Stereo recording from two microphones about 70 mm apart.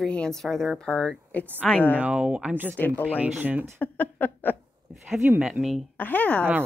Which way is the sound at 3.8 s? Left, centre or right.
Left.